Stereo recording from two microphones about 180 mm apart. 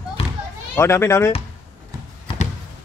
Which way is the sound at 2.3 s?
30° left (ahead or behind).